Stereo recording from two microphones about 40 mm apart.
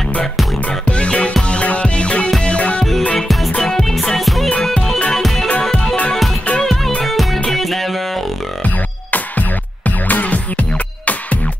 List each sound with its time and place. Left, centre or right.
0.8 s music: left
3.7 s music: centre
6.6 s music: centre
9.8 s music: left